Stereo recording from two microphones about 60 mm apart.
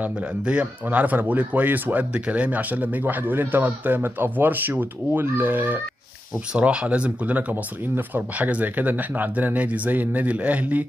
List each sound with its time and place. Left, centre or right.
0.0 s speech: right
0.8 s speech: right
6.6 s speech: right